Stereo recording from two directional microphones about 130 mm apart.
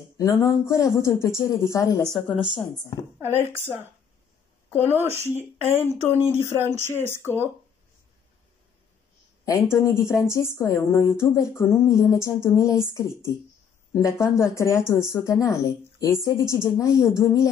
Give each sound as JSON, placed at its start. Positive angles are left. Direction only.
{"t": 0.2, "sound": "speech", "side_deg": 25}
{"t": 2.0, "sound": "speech", "side_deg": 0}
{"t": 4.7, "sound": "speech", "side_deg": -15}
{"t": 5.8, "sound": "speech", "side_deg": 20}
{"t": 7.2, "sound": "speech", "side_deg": -20}
{"t": 9.4, "sound": "speech", "side_deg": 25}